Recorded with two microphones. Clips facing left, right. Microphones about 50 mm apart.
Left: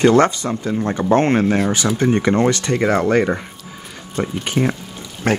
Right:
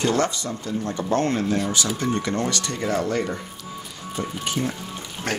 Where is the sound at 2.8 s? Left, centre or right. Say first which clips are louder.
Left 7 dB; left.